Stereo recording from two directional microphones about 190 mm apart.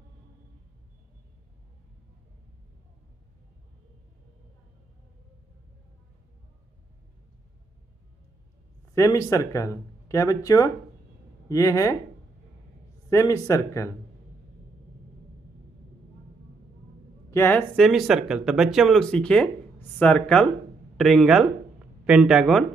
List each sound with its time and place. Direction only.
8.9 s speech: 15° left (ahead or behind)
13.1 s speech: 15° left (ahead or behind)
17.3 s speech: 10° left (ahead or behind)